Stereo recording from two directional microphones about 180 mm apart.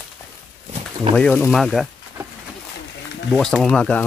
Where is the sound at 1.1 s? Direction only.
5° left (ahead or behind).